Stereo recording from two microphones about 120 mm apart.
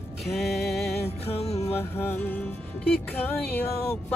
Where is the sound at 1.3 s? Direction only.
60° left (ahead or behind).